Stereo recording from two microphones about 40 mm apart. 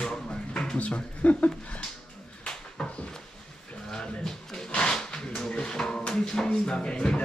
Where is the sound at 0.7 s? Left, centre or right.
Left.